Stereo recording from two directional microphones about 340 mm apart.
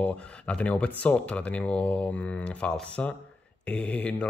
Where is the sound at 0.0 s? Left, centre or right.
Centre.